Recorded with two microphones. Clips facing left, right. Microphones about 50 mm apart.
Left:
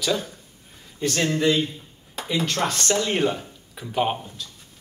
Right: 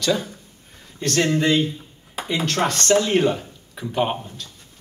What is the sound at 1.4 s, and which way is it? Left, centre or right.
Speech, right.